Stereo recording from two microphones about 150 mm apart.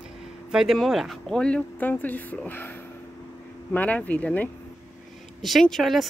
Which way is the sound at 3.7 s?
10° left (ahead or behind).